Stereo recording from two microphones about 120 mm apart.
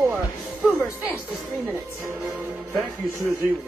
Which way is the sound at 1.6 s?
20° right (ahead or behind).